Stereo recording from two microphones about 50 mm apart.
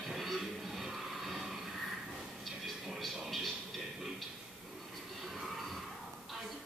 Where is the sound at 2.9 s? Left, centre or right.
Centre.